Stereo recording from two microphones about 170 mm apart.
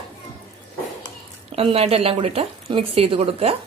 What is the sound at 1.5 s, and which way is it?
A woman's voice, 35° right (ahead or behind).